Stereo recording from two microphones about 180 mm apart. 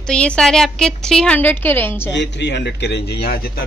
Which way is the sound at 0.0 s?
5° left (ahead or behind).